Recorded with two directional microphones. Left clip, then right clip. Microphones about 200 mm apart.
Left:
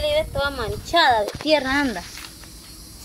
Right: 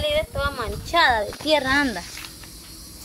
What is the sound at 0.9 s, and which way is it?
A woman's voice, 15° left (ahead or behind).